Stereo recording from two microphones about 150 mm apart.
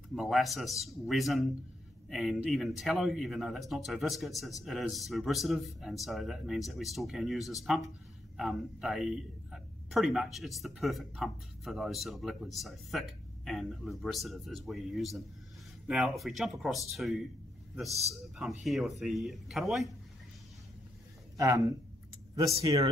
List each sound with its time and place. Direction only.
0.1 s speech: centre (ahead or behind)
18.3 s speech: centre (ahead or behind)
21.4 s speech: 20° right (ahead or behind)